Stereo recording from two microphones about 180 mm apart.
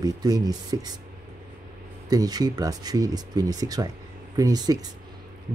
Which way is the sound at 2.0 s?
20° right (ahead or behind).